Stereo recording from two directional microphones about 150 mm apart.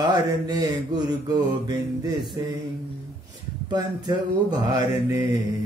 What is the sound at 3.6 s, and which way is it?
Mantra, 30° right (ahead or behind).